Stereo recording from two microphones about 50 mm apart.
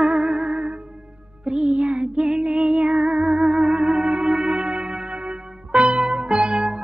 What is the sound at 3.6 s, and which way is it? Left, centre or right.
Music, right.